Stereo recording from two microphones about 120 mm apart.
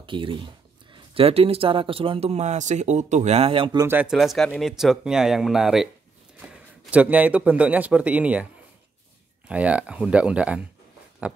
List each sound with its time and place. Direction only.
0.0 s a man's voice: 45° right (ahead or behind)
3.8 s speech: 15° right (ahead or behind)
4.1 s a man's voice: centre (ahead or behind)
9.5 s speech: 10° right (ahead or behind)